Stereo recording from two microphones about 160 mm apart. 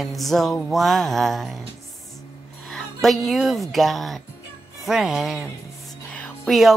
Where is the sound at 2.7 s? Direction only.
Centre (ahead or behind).